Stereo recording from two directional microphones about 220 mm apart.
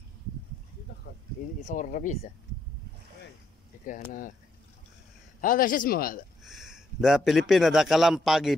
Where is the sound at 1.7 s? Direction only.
35° left (ahead or behind).